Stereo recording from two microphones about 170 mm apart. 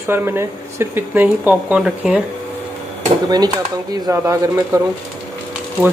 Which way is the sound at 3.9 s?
20° right (ahead or behind).